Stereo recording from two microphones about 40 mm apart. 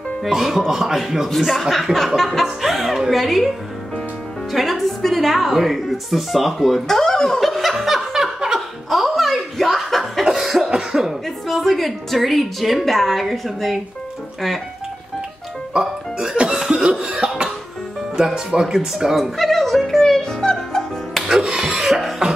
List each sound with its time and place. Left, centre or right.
0.3 s speech: centre
7.3 s laughter: centre
8.5 s chuckle: centre
10.4 s cough: centre
11.2 s speech: centre
15.7 s music: centre
16.5 s chuckle: centre
17.0 s cough: centre
18.1 s speech: centre
19.3 s music: centre
21.7 s beatboxing: centre